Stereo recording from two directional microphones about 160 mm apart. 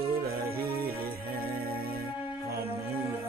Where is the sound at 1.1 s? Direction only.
70° right (ahead or behind).